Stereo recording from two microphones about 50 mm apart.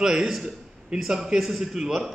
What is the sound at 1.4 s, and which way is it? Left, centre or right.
Speech, centre.